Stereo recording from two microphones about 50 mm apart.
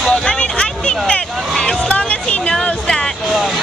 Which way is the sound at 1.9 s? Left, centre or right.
Left.